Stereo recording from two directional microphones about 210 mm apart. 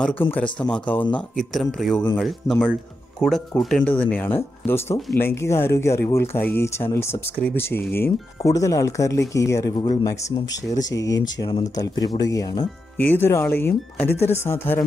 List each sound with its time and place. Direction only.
0.0 s speech: 5° left (ahead or behind)
14.1 s speech: 30° left (ahead or behind)
14.4 s speech: 10° left (ahead or behind)